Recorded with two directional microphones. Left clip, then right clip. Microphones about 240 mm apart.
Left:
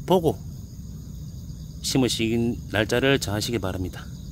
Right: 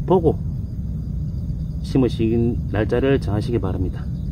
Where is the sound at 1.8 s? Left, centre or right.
Left.